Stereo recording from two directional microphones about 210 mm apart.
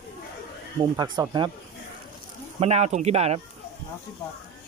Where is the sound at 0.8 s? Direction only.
20° right (ahead or behind).